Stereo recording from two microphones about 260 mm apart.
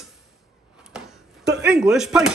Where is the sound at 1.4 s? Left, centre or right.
Right.